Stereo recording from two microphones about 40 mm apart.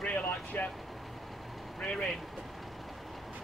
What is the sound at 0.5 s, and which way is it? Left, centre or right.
Speech, left.